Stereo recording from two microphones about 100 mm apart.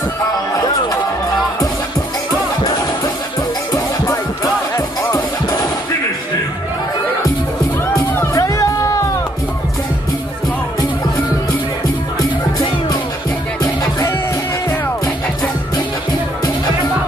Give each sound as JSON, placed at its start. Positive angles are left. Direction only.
{"t": 3.7, "sound": "music", "side_deg": 35}
{"t": 8.1, "sound": "music", "side_deg": 25}
{"t": 13.6, "sound": "music", "side_deg": 35}